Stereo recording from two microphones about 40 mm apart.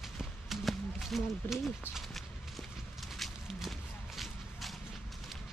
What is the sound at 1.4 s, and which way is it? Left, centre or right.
Speech, left.